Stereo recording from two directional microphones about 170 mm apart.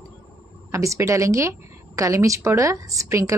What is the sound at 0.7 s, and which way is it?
A woman's voice, 15° right (ahead or behind).